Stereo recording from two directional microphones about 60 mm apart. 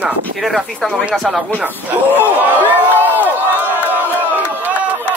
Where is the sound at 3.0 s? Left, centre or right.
Right.